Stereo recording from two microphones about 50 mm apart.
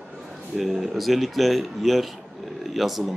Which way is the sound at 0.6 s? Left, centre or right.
Centre.